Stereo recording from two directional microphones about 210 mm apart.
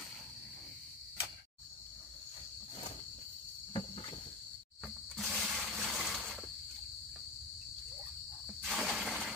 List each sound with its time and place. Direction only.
3.7 s cricket: 25° left (ahead or behind)
4.8 s toilet flush: centre (ahead or behind)
8.6 s a sound: centre (ahead or behind)